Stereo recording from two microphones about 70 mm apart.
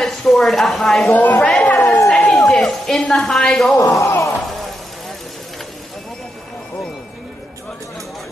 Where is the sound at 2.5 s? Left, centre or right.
Centre.